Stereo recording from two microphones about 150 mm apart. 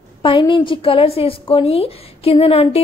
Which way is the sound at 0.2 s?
35° left (ahead or behind).